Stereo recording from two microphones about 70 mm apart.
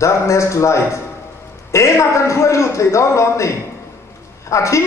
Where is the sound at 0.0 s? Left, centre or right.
Left.